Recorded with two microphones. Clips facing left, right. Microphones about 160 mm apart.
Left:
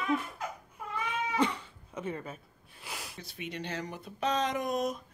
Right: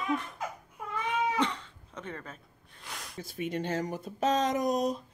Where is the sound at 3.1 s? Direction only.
45° right (ahead or behind).